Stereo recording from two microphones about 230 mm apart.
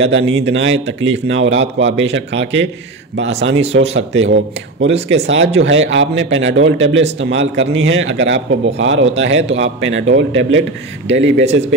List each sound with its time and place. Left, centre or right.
0.0 s a man's voice: right